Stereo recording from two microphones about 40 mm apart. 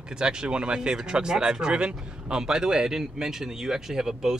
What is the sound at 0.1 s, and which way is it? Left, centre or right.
Speech, centre.